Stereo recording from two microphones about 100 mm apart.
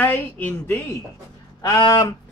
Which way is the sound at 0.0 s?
20° left (ahead or behind).